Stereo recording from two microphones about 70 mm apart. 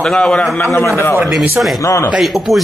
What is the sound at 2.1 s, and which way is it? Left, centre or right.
Speech, centre.